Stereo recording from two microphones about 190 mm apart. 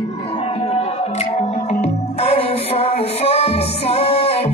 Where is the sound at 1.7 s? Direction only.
35° left (ahead or behind).